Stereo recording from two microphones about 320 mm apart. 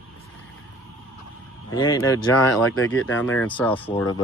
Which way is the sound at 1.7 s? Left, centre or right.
Centre.